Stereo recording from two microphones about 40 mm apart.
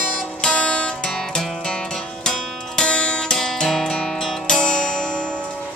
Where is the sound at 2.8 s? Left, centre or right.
Left.